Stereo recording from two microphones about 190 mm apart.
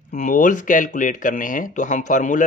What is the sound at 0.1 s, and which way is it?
Speech, 40° left (ahead or behind).